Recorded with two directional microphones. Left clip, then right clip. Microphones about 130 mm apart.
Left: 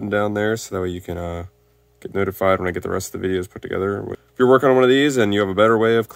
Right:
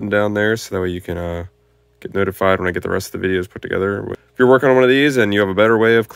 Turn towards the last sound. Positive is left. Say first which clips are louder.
# right 3 dB
turn(degrees=-15)  # may be behind; listen again after turning